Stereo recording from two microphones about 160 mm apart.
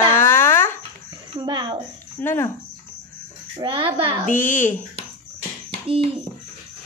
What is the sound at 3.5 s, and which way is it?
Child singing, 30° right (ahead or behind).